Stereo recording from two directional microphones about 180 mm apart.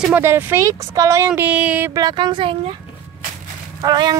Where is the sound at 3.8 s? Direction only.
25° right (ahead or behind).